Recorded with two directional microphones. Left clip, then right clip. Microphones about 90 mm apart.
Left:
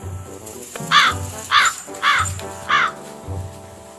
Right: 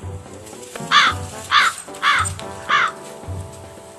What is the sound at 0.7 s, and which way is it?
Crow, centre (ahead or behind).